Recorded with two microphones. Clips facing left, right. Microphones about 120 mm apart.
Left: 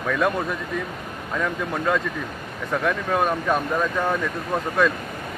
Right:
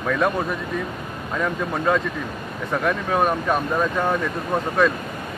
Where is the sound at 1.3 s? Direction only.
5° right (ahead or behind).